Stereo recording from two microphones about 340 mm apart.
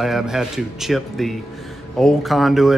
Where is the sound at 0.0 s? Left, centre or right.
Centre.